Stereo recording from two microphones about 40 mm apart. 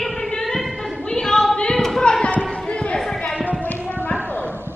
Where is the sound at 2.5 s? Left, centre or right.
Left.